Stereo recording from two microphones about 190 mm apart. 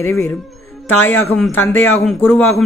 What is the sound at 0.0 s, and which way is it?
Speech, 15° left (ahead or behind).